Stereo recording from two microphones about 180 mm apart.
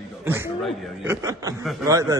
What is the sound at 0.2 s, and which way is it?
Speech, 10° right (ahead or behind).